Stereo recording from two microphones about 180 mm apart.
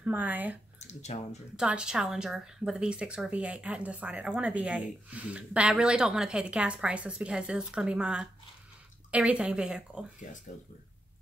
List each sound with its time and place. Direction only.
0.0 s speech: 10° right (ahead or behind)
0.7 s speech: 40° left (ahead or behind)
1.6 s speech: 5° right (ahead or behind)